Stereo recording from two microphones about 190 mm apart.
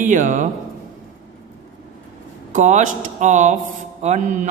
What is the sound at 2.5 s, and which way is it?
A man's voice, 40° right (ahead or behind).